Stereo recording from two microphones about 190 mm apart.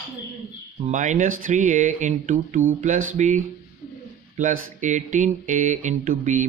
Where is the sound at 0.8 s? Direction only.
40° right (ahead or behind).